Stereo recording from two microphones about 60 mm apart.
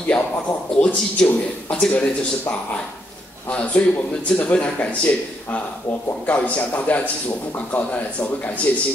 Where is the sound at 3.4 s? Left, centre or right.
Left.